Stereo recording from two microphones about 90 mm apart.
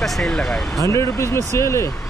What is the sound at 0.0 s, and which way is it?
Speech, 5° left (ahead or behind).